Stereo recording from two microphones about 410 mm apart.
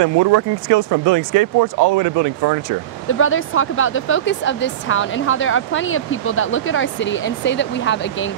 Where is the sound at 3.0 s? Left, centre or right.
Left.